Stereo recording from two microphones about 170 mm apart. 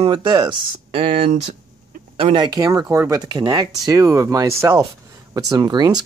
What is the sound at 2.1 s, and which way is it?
Speech, 30° right (ahead or behind).